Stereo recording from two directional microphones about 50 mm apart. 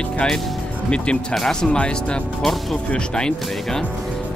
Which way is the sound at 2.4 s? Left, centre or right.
Centre.